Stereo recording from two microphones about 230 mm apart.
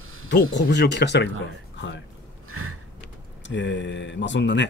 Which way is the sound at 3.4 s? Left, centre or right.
Left.